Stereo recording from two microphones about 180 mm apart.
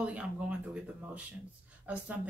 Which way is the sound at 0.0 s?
5° right (ahead or behind).